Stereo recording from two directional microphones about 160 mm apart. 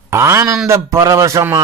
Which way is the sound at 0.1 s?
15° right (ahead or behind).